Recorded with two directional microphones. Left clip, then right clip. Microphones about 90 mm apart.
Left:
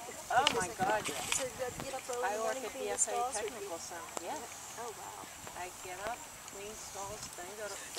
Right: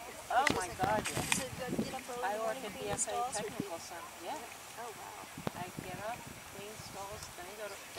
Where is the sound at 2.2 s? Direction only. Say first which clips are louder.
Even; 30° right (ahead or behind).